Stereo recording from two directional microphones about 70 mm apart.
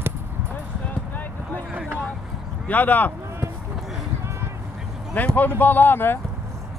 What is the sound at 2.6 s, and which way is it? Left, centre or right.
Speech, left.